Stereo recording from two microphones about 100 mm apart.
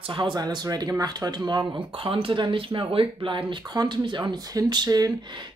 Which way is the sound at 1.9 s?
65° right (ahead or behind).